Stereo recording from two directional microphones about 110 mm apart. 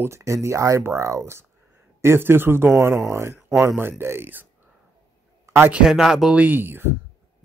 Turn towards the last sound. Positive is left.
turn(degrees=-20)  # may be behind; listen again after turning